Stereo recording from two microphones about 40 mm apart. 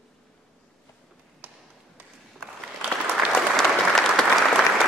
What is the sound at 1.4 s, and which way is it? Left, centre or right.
Tap, right.